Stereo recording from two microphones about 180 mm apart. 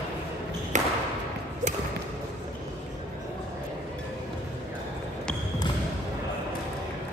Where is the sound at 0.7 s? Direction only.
40° right (ahead or behind).